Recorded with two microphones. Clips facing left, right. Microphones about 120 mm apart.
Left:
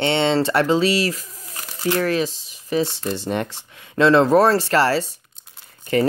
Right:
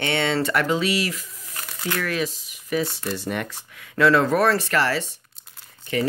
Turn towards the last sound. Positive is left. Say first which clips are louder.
# left 5 dB
turn(degrees=40)  # may be behind; listen again after turning